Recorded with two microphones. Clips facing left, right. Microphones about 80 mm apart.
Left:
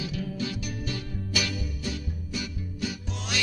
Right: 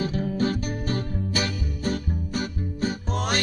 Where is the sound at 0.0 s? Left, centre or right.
Right.